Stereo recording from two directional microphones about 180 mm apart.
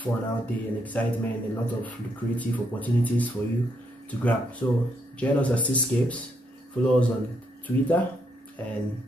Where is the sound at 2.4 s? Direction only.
10° left (ahead or behind).